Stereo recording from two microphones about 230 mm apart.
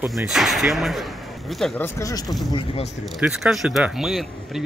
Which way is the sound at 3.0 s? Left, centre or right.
Centre.